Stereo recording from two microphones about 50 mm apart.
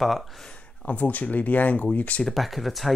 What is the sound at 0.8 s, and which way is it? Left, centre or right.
Speech, left.